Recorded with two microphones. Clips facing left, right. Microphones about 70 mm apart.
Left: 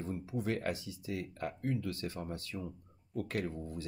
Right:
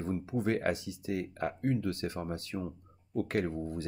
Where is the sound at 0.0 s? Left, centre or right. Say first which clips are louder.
Right 5 dB; right.